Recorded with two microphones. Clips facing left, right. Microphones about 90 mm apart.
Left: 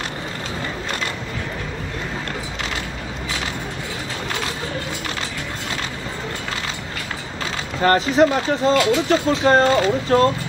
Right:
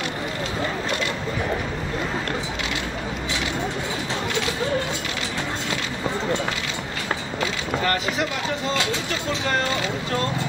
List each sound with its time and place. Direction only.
7.8 s speech: 40° left (ahead or behind)